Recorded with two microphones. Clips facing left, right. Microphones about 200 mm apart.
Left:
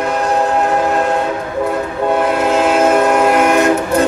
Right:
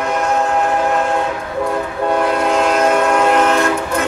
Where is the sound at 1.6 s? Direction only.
5° left (ahead or behind).